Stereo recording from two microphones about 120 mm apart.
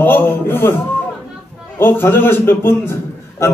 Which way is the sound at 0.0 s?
15° left (ahead or behind).